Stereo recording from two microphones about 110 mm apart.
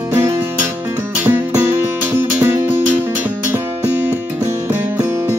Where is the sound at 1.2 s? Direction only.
20° right (ahead or behind).